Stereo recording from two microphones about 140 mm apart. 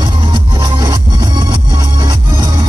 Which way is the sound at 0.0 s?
35° right (ahead or behind).